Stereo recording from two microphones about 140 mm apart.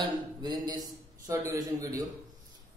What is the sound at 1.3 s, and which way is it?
Speech, 20° right (ahead or behind).